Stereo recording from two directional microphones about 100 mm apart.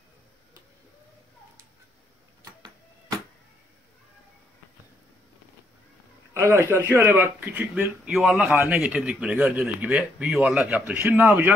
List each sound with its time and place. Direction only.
6.3 s speech: 25° right (ahead or behind)
8.1 s a man's voice: centre (ahead or behind)
11.0 s speech: 20° right (ahead or behind)